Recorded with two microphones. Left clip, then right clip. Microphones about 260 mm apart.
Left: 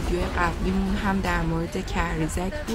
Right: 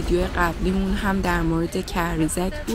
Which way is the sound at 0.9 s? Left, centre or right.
Centre.